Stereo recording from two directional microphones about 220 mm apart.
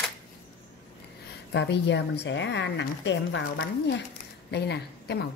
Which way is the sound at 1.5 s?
55° left (ahead or behind).